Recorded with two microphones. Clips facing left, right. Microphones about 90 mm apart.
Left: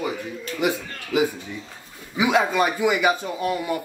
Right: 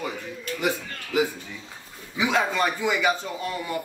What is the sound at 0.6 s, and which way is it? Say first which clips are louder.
Speech: left 4 dB; 15° left (ahead or behind).